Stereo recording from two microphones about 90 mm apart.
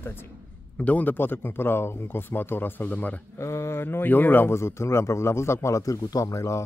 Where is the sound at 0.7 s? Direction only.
15° left (ahead or behind).